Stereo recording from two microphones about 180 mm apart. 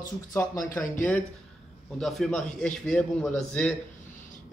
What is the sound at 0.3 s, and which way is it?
Speech, 15° left (ahead or behind).